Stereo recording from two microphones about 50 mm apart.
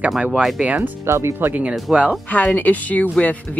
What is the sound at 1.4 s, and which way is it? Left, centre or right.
Speech, right.